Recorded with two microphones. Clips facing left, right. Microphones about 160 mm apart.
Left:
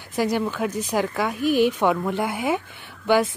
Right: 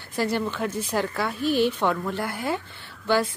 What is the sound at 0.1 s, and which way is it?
Speech, 10° left (ahead or behind).